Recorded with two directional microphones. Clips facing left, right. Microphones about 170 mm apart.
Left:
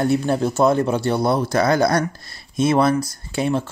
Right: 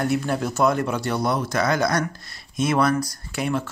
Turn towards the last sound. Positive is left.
turn(degrees=30)  # may be behind; listen again after turning